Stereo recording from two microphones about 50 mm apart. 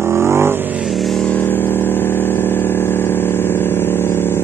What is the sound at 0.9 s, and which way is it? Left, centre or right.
Vehicle, centre.